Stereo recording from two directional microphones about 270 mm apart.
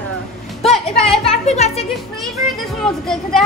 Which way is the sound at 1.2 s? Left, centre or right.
Left.